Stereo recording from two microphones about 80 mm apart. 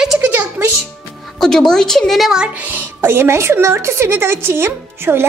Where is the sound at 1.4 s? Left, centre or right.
Centre.